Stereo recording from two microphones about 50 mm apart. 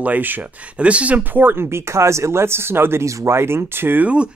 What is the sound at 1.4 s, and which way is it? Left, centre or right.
Speech, right.